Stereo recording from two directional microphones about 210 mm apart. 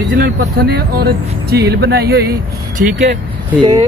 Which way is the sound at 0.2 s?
50° right (ahead or behind).